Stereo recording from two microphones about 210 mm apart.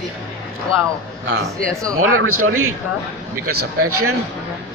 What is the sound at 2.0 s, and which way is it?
Speech, 85° right.